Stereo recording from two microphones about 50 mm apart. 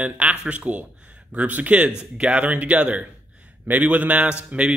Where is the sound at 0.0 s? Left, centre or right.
Right.